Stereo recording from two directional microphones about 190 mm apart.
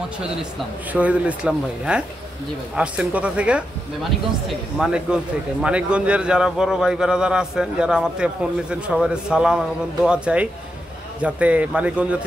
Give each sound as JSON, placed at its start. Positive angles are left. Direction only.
{"t": 0.9, "sound": "a man's voice", "side_deg": -5}